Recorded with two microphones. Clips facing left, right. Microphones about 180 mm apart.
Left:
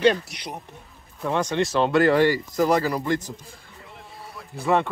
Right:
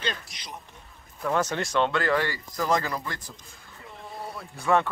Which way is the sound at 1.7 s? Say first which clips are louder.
Left 7 dB; 25° left (ahead or behind).